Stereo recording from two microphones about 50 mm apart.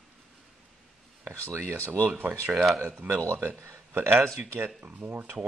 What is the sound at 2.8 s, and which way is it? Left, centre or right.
Speech, right.